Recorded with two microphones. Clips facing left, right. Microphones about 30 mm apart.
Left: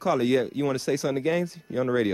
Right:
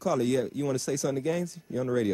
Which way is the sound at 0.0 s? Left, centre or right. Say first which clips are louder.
Left 3 dB; left.